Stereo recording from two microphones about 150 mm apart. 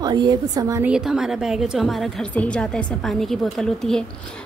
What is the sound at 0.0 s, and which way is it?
Speech, 30° right (ahead or behind).